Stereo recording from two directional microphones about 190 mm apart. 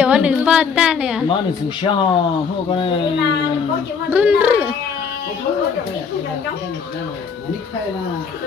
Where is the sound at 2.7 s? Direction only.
30° left (ahead or behind).